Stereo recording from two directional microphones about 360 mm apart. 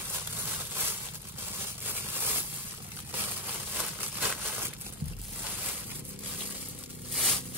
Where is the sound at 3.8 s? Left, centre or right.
Centre.